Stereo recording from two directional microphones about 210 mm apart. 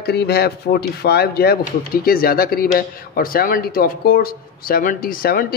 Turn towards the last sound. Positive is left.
turn(degrees=45)  # may be behind; listen again after turning